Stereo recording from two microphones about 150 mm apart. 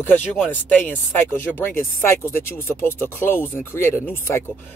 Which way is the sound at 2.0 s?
15° left (ahead or behind).